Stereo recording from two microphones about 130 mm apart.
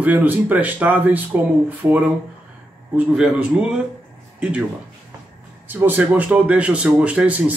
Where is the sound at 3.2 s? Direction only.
5° right (ahead or behind).